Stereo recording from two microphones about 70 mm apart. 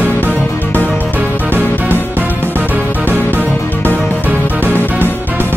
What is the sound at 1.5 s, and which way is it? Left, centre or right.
Music, right.